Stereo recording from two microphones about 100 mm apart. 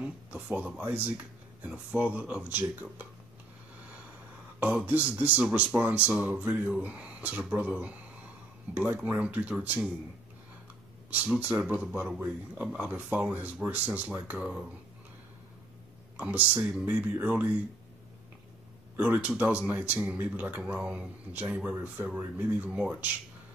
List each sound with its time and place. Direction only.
0.0 s speech: 15° right (ahead or behind)
4.6 s speech: 15° right (ahead or behind)
11.1 s speech: 15° right (ahead or behind)
16.2 s speech: 15° right (ahead or behind)
18.9 s speech: 15° right (ahead or behind)